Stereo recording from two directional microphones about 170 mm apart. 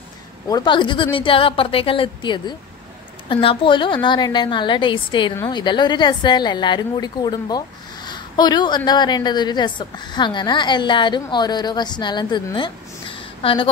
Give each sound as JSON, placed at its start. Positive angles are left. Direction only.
{"t": 0.5, "sound": "a woman's voice", "side_deg": 25}